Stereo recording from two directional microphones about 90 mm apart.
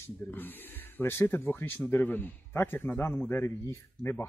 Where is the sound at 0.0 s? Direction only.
20° left (ahead or behind).